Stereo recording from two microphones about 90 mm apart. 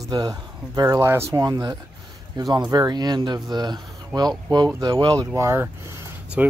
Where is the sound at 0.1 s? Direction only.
45° right (ahead or behind).